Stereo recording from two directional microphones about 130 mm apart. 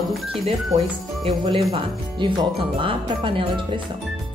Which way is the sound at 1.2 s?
45° right (ahead or behind).